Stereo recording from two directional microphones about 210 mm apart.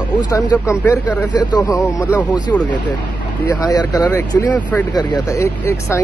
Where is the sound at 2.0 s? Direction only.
5° right (ahead or behind).